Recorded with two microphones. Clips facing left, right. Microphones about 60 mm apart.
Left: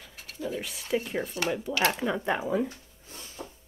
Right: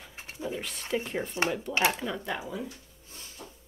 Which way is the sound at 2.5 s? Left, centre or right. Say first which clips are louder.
Left 9 dB; left.